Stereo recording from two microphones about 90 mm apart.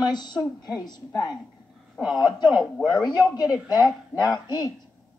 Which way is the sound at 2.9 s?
45° left (ahead or behind).